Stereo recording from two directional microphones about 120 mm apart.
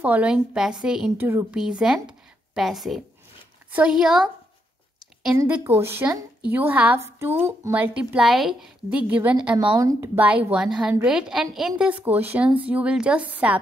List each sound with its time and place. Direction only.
0.0 s a woman's voice: 10° right (ahead or behind)
1.1 s a woman's voice: 15° right (ahead or behind)
1.6 s a woman's voice: 5° right (ahead or behind)
5.7 s a woman's voice: 20° right (ahead or behind); by 9.0 s 5° right (ahead or behind)
9.0 s a woman's voice: 15° right (ahead or behind)
9.8 s a woman's voice: 30° right (ahead or behind)
10.1 s a woman's voice: 15° right (ahead or behind)